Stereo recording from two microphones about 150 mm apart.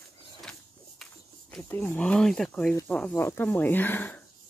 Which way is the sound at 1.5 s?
10° left (ahead or behind).